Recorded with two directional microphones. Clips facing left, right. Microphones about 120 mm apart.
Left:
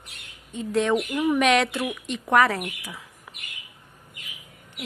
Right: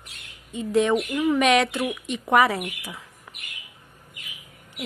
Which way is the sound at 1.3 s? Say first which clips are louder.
Right 1 dB; centre (ahead or behind).